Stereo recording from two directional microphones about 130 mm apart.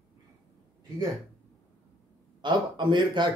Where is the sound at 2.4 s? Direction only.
35° right (ahead or behind).